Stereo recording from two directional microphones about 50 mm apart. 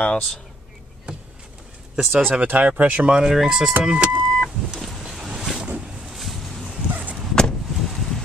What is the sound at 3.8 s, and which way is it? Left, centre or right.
Speech, right.